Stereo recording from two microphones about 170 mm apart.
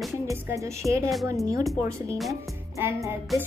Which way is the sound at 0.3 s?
15° right (ahead or behind).